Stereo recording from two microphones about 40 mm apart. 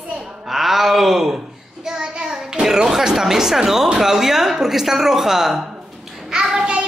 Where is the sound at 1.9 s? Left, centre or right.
Centre.